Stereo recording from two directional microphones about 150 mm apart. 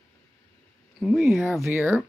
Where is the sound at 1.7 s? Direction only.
15° right (ahead or behind).